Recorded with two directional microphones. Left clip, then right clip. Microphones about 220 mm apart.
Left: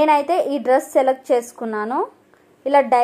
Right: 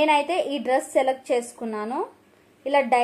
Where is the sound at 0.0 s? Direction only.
10° left (ahead or behind).